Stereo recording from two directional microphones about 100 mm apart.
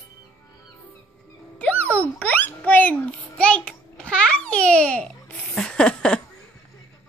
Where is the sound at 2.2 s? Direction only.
20° left (ahead or behind).